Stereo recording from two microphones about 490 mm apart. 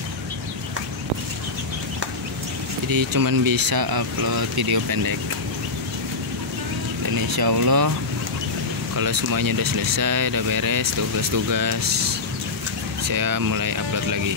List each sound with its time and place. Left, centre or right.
2.9 s speech: right
7.2 s speech: right
8.9 s speech: right